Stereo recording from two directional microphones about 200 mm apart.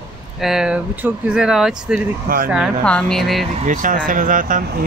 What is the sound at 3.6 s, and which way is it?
Speech, 40° right (ahead or behind).